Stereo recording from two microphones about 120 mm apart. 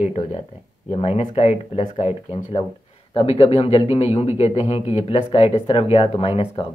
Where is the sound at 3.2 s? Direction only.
50° left (ahead or behind).